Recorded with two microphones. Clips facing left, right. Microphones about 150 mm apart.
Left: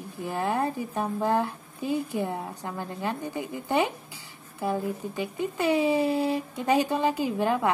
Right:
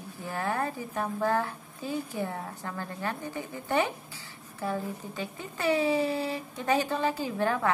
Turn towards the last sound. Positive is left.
turn(degrees=15)  # may be behind; listen again after turning